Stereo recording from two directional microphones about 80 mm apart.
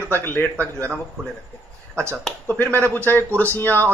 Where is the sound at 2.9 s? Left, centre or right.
Left.